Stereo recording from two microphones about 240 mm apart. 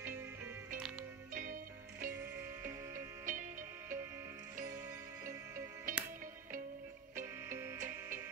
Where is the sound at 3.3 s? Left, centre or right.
Right.